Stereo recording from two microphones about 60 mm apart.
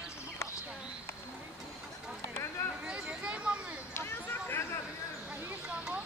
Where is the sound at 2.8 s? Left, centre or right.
Centre.